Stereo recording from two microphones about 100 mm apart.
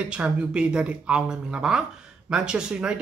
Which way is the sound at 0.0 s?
10° right (ahead or behind).